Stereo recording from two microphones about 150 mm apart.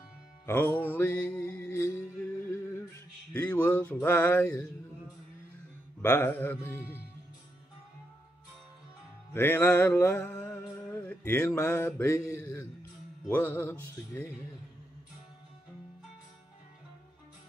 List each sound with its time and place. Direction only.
0.5 s mantra: 15° left (ahead or behind)
6.0 s speech: 15° left (ahead or behind)
9.3 s music: 15° left (ahead or behind)
13.4 s speech: 15° left (ahead or behind)